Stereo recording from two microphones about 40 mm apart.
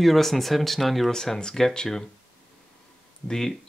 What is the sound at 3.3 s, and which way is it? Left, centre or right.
Speech, centre.